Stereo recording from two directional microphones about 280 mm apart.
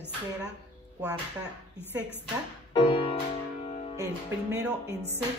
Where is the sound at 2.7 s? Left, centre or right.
Centre.